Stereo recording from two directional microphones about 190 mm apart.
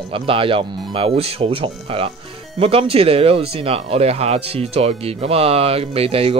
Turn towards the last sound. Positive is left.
turn(degrees=-30)  # may be behind; listen again after turning